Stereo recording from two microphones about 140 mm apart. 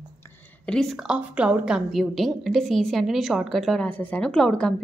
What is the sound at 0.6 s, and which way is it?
A woman's voice, 5° left (ahead or behind).